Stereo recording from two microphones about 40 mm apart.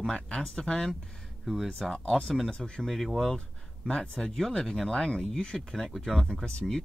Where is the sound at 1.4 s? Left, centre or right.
Centre.